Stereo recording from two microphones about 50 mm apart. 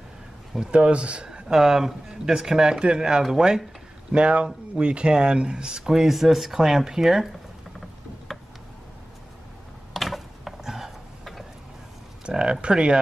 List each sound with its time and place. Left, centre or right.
0.6 s a man's voice: centre
1.5 s speech: centre
4.1 s a man's voice: right
8.3 s tick: centre
9.9 s a sound: centre
12.3 s speech: centre